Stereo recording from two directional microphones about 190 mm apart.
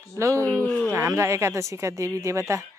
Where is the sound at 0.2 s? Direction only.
15° right (ahead or behind).